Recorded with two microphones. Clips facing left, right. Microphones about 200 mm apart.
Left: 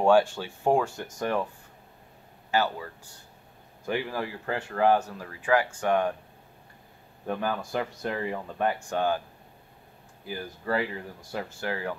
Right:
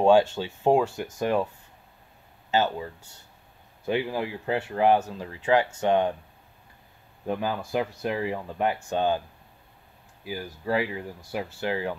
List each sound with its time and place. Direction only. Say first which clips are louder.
0.0 s speech: right 2 dB; 20° right (ahead or behind)
2.5 s speech: right 2 dB; 20° right (ahead or behind)
7.2 s speech: right 1 dB; 15° right (ahead or behind)
10.6 s speech: right 2 dB; 15° right (ahead or behind)